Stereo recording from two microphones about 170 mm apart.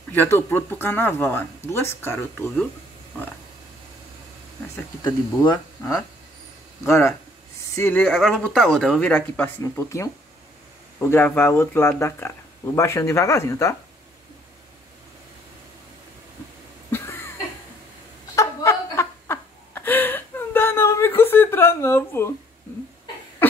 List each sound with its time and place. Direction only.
0.1 s speech: 10° left (ahead or behind)
5.5 s speech: 20° left (ahead or behind)
16.9 s a sound: 15° left (ahead or behind)
18.3 s laughter: 20° left (ahead or behind)